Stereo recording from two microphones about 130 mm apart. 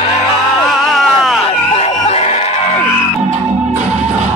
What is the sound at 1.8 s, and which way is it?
Crowd, 55° left (ahead or behind).